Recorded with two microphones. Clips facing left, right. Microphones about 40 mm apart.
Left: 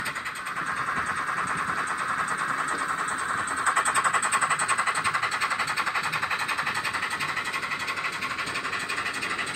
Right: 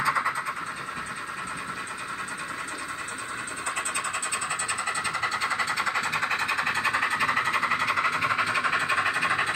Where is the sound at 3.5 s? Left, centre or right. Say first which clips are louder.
Left 7 dB; left; by 6.1 s centre.